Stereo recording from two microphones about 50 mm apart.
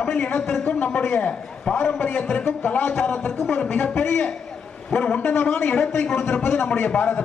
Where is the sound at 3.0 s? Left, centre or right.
Centre; by 4.3 s left.